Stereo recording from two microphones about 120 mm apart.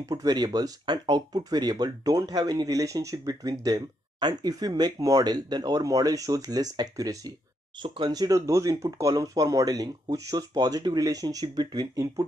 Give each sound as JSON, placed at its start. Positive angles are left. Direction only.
{"t": 0.0, "sound": "speech", "side_deg": -35}